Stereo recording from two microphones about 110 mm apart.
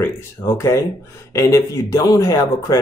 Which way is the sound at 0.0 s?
25° left (ahead or behind).